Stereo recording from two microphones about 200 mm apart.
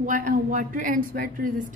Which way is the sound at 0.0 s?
40° right (ahead or behind).